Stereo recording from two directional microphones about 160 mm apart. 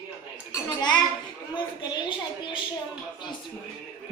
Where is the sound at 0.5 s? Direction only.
25° left (ahead or behind).